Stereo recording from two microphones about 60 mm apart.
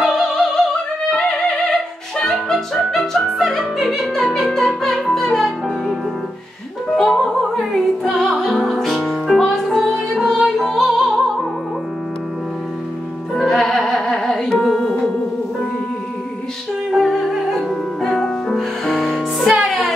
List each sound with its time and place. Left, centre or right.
0.0 s opera: centre
1.1 s music: centre
7.0 s music: centre
13.3 s music: centre
16.9 s music: centre